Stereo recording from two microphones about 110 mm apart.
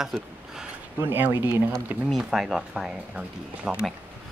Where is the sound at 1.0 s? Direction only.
20° right (ahead or behind).